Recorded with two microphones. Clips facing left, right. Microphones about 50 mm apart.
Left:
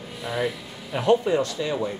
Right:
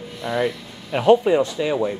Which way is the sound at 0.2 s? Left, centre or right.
Centre.